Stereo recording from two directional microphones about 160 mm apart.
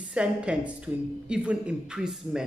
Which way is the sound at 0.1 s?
5° right (ahead or behind).